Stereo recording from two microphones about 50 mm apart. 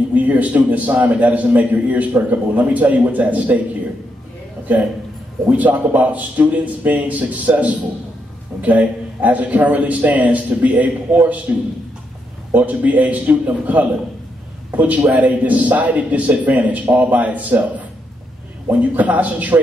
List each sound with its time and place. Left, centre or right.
0.1 s a man's voice: right
5.5 s a man's voice: right
12.5 s a man's voice: right